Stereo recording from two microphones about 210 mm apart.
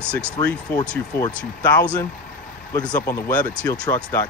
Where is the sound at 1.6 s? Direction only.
5° left (ahead or behind).